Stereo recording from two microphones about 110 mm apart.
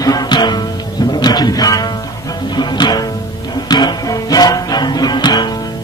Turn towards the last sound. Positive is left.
turn(degrees=40)  # may be behind; listen again after turning